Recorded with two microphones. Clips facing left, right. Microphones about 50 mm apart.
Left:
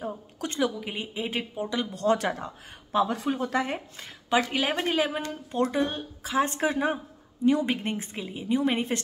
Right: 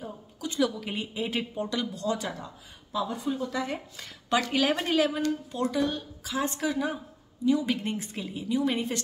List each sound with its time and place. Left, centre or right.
0.6 s a woman's voice: centre
2.0 s speech: left
3.5 s a woman's voice: left
3.9 s a woman's voice: left
7.7 s a woman's voice: left